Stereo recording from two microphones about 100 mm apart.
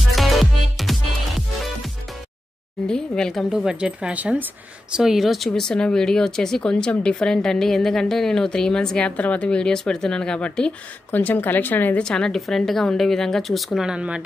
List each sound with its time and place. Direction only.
0.0 s music: centre (ahead or behind)
2.9 s speech: 5° left (ahead or behind); by 4.5 s 15° right (ahead or behind)
4.9 s a woman's voice: 5° right (ahead or behind)